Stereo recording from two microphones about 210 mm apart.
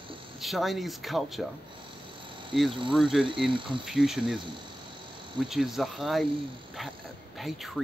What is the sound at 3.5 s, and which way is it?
Speech, 25° right (ahead or behind).